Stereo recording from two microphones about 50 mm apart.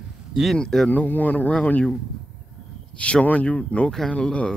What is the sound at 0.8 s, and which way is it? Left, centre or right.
Speech, left.